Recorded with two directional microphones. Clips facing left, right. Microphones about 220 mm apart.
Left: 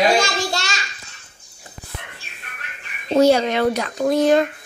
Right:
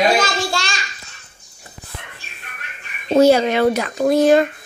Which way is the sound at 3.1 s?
5° right (ahead or behind).